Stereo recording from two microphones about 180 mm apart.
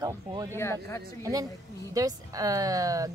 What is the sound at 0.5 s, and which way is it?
Speech, 15° left (ahead or behind).